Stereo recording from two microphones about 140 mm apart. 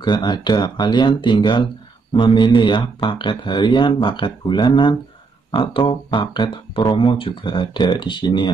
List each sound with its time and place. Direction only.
0.0 s speech: 35° left (ahead or behind)